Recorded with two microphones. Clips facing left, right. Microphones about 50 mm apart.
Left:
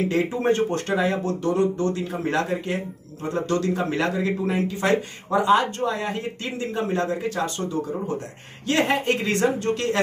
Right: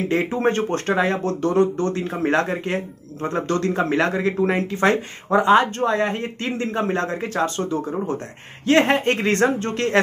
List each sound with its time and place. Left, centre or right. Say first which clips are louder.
0.1 s speech: right 1 dB; right